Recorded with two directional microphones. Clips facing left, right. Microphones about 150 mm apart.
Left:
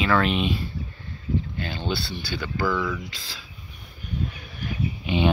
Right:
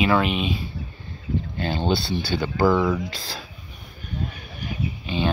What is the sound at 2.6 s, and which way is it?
Speech, 45° right (ahead or behind).